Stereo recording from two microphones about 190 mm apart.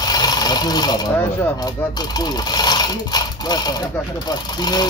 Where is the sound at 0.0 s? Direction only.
20° left (ahead or behind).